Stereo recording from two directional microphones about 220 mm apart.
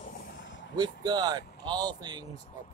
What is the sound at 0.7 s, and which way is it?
Speech, 20° right (ahead or behind).